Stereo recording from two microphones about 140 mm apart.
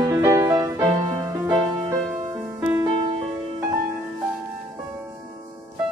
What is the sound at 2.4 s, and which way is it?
Music, 10° right (ahead or behind).